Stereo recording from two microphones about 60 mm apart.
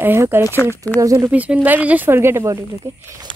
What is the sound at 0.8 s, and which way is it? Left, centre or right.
Speech, left.